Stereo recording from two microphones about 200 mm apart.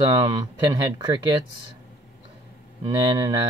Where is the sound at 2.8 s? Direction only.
20° right (ahead or behind).